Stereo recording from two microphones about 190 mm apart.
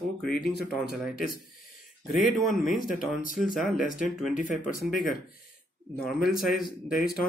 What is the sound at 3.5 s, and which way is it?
Speech, 5° right (ahead or behind).